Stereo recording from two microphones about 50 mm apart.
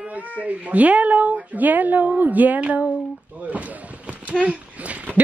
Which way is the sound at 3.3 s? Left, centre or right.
Right.